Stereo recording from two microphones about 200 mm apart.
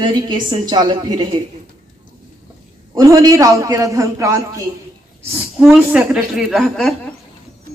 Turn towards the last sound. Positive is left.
turn(degrees=0)  # may be behind; listen again after turning